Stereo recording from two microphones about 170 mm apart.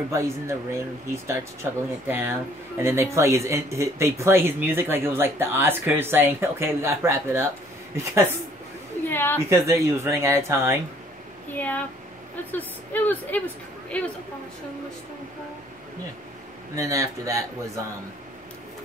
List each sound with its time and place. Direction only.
0.1 s speech: 15° right (ahead or behind)
9.1 s a woman's voice: 10° left (ahead or behind)
9.5 s speech: 15° right (ahead or behind)
11.5 s a woman's voice: 10° left (ahead or behind)
16.7 s speech: 20° right (ahead or behind)